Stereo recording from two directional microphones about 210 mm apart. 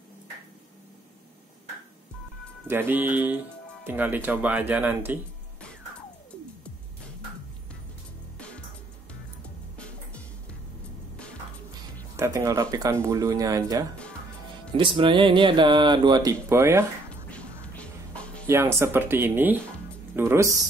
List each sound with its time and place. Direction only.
2.7 s speech: 10° right (ahead or behind)
5.6 s music: 5° left (ahead or behind)
12.2 s speech: 15° right (ahead or behind)
17.3 s music: 5° left (ahead or behind)
18.5 s speech: 10° right (ahead or behind)